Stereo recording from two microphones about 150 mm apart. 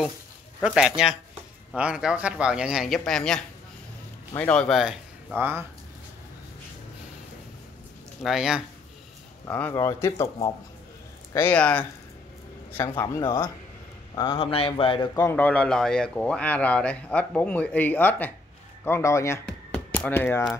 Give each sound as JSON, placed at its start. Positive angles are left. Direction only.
{"t": 0.6, "sound": "speech", "side_deg": -5}
{"t": 5.3, "sound": "speech", "side_deg": -15}
{"t": 8.2, "sound": "speech", "side_deg": 0}
{"t": 9.5, "sound": "speech", "side_deg": 10}
{"t": 11.3, "sound": "speech", "side_deg": 10}
{"t": 14.1, "sound": "speech", "side_deg": 35}
{"t": 15.1, "sound": "speech", "side_deg": 15}
{"t": 19.4, "sound": "a sound", "side_deg": 5}